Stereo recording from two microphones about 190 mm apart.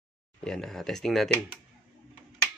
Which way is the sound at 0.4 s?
5° left (ahead or behind).